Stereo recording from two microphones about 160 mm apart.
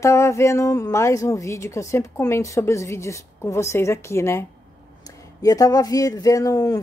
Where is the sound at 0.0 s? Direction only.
20° left (ahead or behind).